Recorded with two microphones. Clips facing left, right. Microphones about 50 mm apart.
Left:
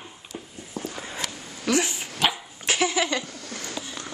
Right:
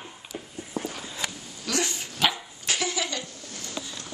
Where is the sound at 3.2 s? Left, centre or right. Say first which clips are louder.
Left 4 dB; left.